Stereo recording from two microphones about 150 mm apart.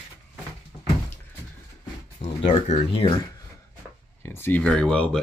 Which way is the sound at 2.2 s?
45° left (ahead or behind).